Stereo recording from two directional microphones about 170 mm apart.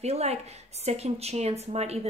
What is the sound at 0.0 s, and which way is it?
A woman's voice, 40° right (ahead or behind).